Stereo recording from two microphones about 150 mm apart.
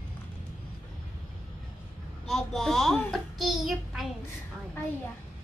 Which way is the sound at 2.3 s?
5° left (ahead or behind).